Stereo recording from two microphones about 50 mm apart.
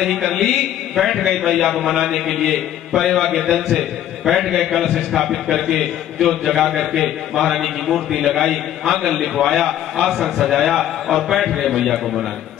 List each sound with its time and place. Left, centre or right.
0.0 s a man's voice: centre